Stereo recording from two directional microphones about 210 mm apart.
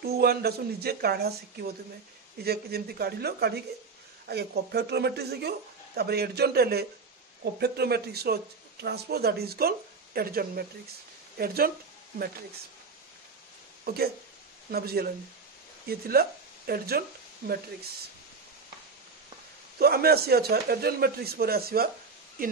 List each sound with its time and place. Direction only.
0.0 s speech: 50° right (ahead or behind)
13.8 s speech: 50° right (ahead or behind)
19.8 s speech: 50° right (ahead or behind)